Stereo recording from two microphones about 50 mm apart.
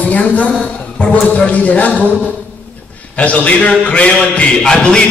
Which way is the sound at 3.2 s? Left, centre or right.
Left.